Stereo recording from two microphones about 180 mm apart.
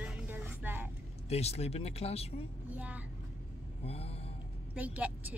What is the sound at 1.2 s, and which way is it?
A man's voice, 35° left (ahead or behind).